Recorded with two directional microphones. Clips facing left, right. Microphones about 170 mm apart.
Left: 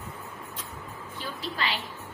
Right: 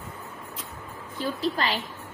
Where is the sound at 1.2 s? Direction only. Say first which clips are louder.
Right 7 dB; 40° right (ahead or behind).